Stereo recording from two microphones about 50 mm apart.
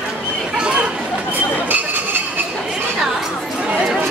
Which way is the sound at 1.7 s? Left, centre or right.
Right.